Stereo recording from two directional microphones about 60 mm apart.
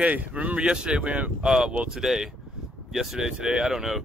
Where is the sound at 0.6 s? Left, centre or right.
Centre.